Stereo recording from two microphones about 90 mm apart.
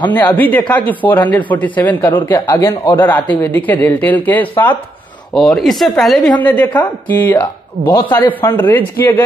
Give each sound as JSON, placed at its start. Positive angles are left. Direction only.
{"t": 0.1, "sound": "speech", "side_deg": 20}
{"t": 2.2, "sound": "speech", "side_deg": 45}
{"t": 3.0, "sound": "speech", "side_deg": 20}
{"t": 5.3, "sound": "speech", "side_deg": 5}
{"t": 6.4, "sound": "speech", "side_deg": 20}